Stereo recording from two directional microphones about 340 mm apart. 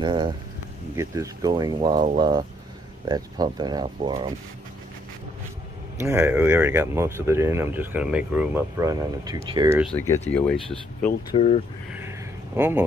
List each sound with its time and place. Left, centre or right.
0.0 s speech: centre
5.9 s speech: centre
9.9 s speech: centre
11.1 s speech: centre
12.5 s speech: centre